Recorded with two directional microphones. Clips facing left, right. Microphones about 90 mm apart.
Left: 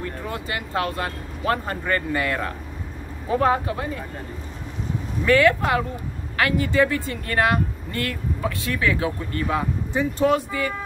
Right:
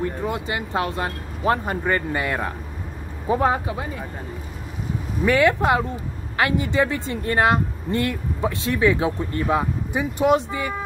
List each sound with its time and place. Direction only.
0.0 s a woman's voice: 20° right (ahead or behind)
5.2 s a woman's voice: 20° right (ahead or behind)